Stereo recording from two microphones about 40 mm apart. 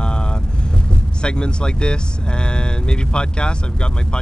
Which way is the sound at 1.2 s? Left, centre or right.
Left.